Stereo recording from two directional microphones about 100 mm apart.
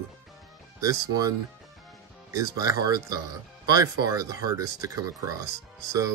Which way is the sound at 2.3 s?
35° right (ahead or behind).